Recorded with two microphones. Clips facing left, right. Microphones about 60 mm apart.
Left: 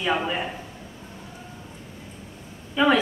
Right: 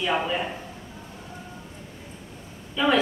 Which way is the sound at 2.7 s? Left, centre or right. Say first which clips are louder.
Left 2 dB; centre.